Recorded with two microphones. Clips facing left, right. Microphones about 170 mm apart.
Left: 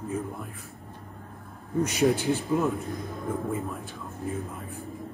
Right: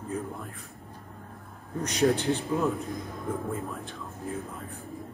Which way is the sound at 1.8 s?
5° left (ahead or behind).